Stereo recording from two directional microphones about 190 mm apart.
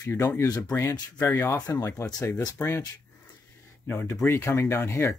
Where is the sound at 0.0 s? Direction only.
15° left (ahead or behind).